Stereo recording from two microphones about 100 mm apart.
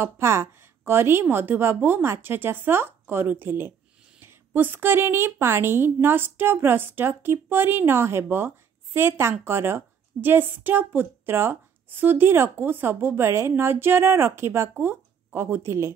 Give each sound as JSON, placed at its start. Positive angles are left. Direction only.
{"t": 0.0, "sound": "a woman's voice", "side_deg": -30}